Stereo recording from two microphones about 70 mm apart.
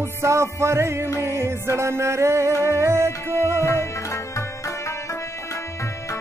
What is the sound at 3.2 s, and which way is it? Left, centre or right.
Music, left.